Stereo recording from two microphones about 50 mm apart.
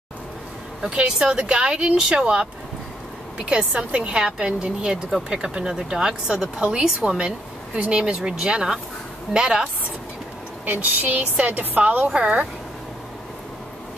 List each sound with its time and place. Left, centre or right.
0.8 s a woman's voice: centre
10.6 s a woman's voice: right